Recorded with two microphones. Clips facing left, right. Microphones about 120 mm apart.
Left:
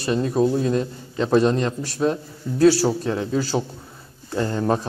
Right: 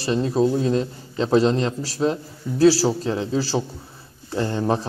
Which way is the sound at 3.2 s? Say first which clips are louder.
Even; 30° right (ahead or behind).